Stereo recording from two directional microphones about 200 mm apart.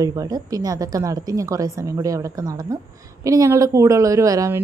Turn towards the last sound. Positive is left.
turn(degrees=-15)  # may be behind; listen again after turning